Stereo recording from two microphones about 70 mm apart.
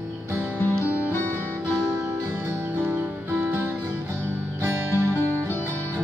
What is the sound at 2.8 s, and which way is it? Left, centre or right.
Music, right.